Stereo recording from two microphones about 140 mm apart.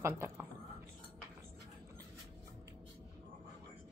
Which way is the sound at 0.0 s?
20° right (ahead or behind).